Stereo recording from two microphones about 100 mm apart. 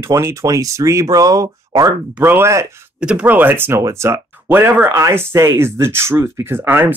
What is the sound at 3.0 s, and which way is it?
Speech, 10° right (ahead or behind).